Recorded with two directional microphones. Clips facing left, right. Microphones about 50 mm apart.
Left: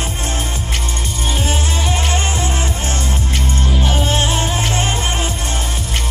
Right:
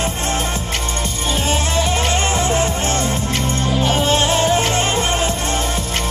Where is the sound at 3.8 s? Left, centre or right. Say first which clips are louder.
Right 2 dB; right.